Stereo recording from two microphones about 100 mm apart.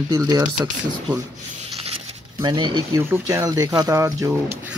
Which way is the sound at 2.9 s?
30° right (ahead or behind).